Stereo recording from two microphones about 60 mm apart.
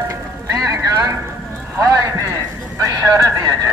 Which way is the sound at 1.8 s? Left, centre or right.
Right.